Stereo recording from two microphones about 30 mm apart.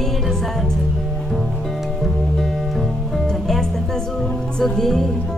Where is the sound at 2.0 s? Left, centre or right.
Centre.